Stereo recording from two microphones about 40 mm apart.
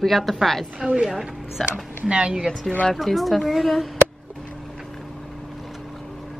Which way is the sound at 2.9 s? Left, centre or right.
Centre.